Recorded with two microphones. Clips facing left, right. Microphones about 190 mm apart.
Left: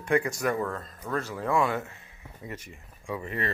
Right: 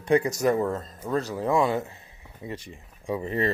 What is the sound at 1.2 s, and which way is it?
Speech, 35° right (ahead or behind).